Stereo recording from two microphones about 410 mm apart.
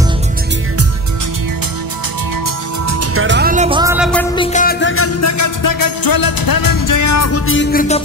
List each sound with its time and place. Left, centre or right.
2.9 s music: right; by 4.5 s centre
4.5 s music: centre